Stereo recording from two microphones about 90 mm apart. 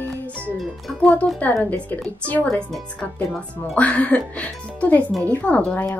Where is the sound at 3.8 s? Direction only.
15° left (ahead or behind).